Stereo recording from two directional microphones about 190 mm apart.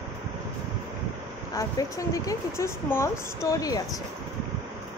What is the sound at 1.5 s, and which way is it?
Speech, 20° left (ahead or behind).